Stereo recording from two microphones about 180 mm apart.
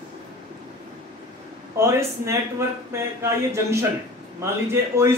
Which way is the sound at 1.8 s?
15° right (ahead or behind).